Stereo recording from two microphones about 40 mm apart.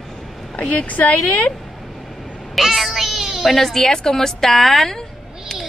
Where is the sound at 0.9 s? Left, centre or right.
Left.